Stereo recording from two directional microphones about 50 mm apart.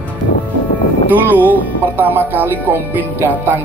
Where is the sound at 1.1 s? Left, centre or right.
Right.